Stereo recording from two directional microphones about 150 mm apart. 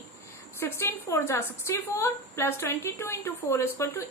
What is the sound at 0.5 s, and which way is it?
A woman's voice, 20° left (ahead or behind).